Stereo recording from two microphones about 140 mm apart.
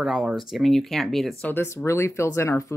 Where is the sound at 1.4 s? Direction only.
15° left (ahead or behind).